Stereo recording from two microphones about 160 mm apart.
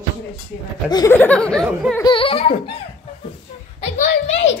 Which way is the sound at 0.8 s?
25° left (ahead or behind).